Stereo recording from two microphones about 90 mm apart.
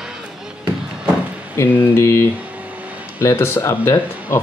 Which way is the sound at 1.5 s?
30° left (ahead or behind).